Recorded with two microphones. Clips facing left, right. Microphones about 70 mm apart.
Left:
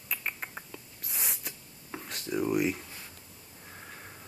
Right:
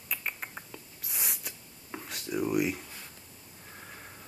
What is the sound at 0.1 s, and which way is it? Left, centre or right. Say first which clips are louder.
Cat: even; centre.